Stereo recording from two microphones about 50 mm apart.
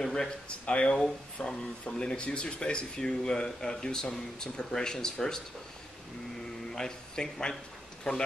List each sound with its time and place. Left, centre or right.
0.0 s speech: centre
6.7 s a man's voice: centre